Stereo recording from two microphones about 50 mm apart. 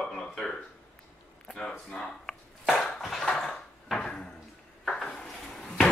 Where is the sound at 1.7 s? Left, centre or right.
Left.